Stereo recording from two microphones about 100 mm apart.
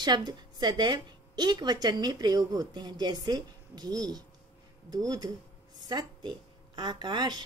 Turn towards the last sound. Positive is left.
turn(degrees=-45)  # may be behind; listen again after turning